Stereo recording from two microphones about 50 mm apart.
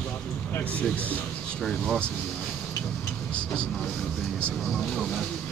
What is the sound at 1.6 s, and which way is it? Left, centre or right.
Speech, centre.